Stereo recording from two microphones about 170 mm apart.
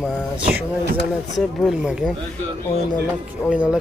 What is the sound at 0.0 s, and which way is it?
Speech, 10° right (ahead or behind).